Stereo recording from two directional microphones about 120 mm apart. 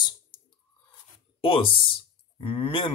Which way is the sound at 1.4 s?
50° left (ahead or behind).